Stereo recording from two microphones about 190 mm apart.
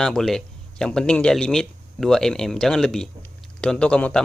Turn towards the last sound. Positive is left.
turn(degrees=5)  # may be behind; listen again after turning